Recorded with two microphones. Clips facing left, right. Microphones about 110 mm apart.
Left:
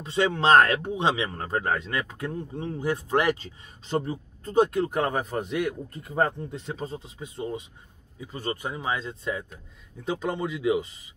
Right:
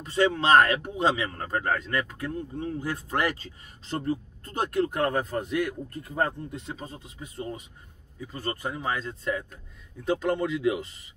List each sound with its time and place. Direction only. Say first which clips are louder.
0.0 s speech: even; 25° left (ahead or behind)
1.0 s speech: right 2 dB; 15° left (ahead or behind)